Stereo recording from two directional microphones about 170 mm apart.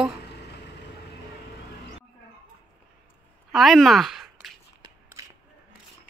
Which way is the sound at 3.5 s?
Centre (ahead or behind).